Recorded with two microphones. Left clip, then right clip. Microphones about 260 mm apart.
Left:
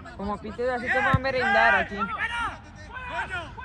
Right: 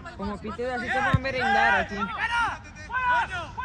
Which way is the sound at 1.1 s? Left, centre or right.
Centre.